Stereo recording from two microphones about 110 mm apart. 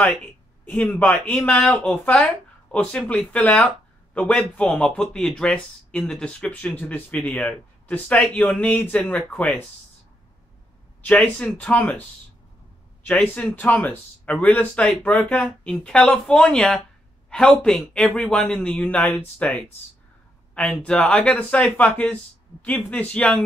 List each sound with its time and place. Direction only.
0.7 s speech: 15° left (ahead or behind)
11.1 s speech: 10° left (ahead or behind)
13.0 s speech: 15° left (ahead or behind)